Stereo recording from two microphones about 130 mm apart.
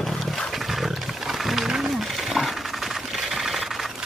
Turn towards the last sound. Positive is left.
turn(degrees=0)  # may be behind; listen again after turning